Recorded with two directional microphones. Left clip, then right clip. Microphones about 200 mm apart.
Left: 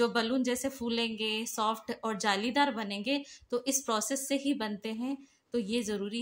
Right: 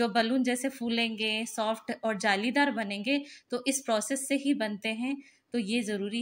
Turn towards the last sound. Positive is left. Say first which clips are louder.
# right 2 dB
turn(degrees=0)  # may be behind; listen again after turning